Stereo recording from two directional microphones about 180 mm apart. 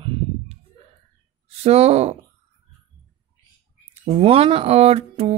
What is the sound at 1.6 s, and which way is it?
Speech, 35° right (ahead or behind).